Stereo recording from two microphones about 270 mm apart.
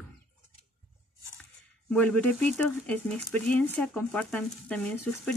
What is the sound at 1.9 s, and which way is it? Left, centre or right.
Speech, centre.